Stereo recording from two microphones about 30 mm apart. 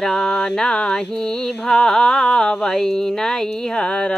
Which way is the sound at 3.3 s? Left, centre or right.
Left.